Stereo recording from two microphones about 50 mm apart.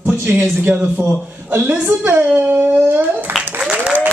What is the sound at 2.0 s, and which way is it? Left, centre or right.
A child's voice, right.